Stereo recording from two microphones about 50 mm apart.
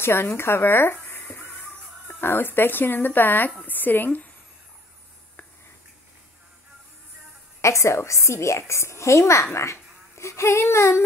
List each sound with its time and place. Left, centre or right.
0.0 s speech: left
2.0 s a woman's voice: left
7.6 s a woman's voice: left